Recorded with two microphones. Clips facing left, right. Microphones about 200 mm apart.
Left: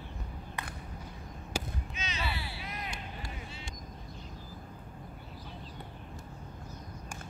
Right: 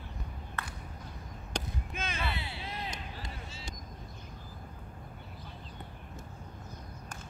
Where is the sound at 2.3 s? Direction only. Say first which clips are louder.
Right 1 dB; 20° right (ahead or behind).